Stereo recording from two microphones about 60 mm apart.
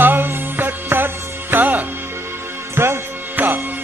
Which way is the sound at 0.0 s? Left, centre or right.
Right.